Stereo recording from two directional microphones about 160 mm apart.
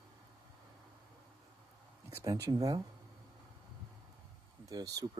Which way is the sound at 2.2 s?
20° right (ahead or behind).